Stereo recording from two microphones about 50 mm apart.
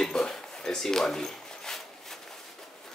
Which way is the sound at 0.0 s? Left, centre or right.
Centre.